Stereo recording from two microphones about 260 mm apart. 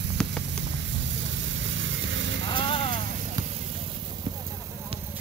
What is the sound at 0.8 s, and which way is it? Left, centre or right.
Vehicle, right.